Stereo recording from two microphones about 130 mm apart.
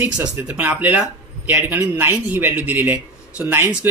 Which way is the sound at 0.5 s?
10° right (ahead or behind).